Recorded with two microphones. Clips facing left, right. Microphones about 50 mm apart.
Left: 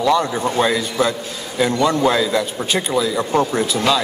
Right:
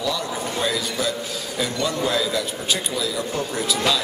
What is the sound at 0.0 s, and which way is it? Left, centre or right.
A man's voice, left.